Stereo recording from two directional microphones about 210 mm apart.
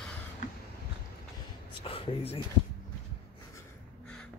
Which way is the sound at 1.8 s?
25° left (ahead or behind).